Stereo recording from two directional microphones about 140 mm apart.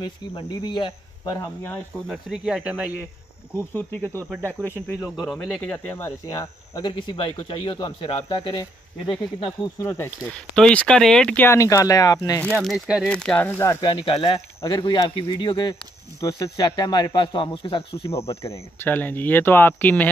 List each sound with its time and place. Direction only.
0.0 s speech: 30° left (ahead or behind)
1.6 s speech: 5° left (ahead or behind)
4.0 s speech: 15° right (ahead or behind)
5.2 s speech: 5° left (ahead or behind); by 9.1 s 30° left (ahead or behind)
9.8 s speech: 15° left (ahead or behind)
12.5 s speech: centre (ahead or behind)
13.1 s speech: 5° left (ahead or behind)
13.7 s speech: 35° left (ahead or behind)
18.5 s speech: 15° left (ahead or behind)